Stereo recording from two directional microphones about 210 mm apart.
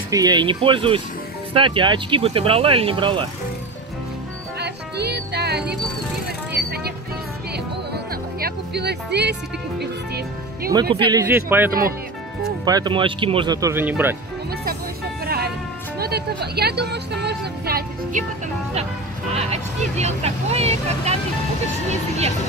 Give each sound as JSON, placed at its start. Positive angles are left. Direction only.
{"t": 0.1, "sound": "speech", "side_deg": -20}
{"t": 4.6, "sound": "speech", "side_deg": -50}
{"t": 7.9, "sound": "music", "side_deg": -45}
{"t": 11.1, "sound": "speech", "side_deg": -15}
{"t": 15.2, "sound": "music", "side_deg": -50}
{"t": 16.0, "sound": "a woman's voice", "side_deg": -50}
{"t": 19.3, "sound": "speech", "side_deg": -30}